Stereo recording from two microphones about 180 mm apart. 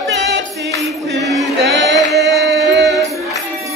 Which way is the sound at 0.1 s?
70° right (ahead or behind).